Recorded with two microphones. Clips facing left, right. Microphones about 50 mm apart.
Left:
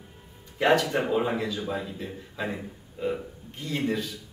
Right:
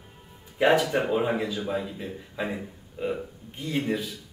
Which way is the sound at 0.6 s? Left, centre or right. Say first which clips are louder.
Right 1 dB; centre.